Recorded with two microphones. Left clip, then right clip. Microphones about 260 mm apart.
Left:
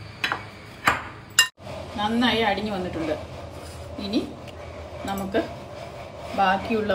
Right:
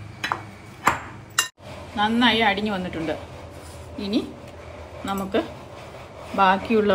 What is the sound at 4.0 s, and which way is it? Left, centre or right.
Speech, centre.